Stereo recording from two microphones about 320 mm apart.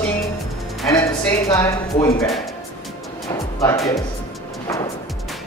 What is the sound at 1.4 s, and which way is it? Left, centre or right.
Speech, centre.